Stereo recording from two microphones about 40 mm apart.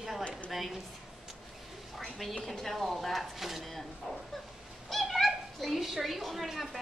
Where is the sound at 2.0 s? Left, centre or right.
Centre.